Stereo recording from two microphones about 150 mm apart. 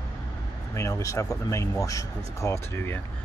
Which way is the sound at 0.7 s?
20° left (ahead or behind).